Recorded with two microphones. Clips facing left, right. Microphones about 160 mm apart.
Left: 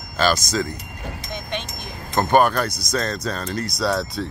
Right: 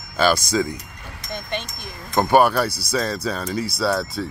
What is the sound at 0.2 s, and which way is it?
Speech, 10° right (ahead or behind).